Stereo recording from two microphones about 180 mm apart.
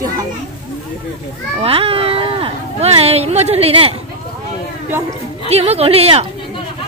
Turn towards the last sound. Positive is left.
turn(degrees=-35)  # may be behind; listen again after turning